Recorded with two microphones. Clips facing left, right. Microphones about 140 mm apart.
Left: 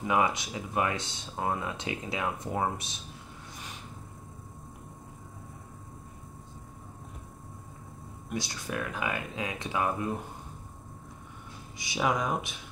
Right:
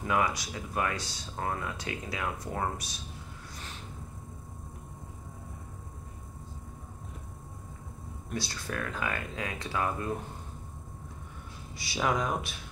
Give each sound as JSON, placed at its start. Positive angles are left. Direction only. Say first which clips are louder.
{"t": 0.0, "sound": "speech", "louder": "left 2 dB", "side_deg": 20}
{"t": 8.3, "sound": "speech", "louder": "left 1 dB", "side_deg": 15}
{"t": 11.9, "sound": "speech", "louder": "left 1 dB", "side_deg": 20}